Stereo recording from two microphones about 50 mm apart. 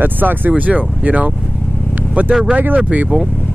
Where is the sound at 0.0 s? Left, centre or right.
Right.